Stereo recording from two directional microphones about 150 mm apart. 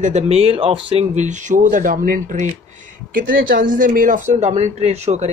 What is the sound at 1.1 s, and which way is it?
Speech, 55° right (ahead or behind).